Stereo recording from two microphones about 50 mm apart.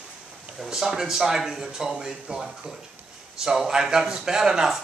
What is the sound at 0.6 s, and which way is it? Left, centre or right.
Speech, centre.